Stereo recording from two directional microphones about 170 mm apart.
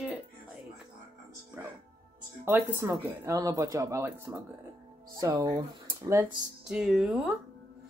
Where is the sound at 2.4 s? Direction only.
15° right (ahead or behind).